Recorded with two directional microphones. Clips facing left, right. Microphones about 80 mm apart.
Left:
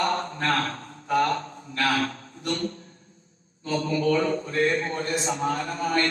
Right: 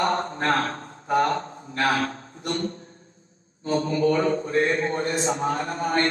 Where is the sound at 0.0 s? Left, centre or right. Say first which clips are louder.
Right 2 dB; right.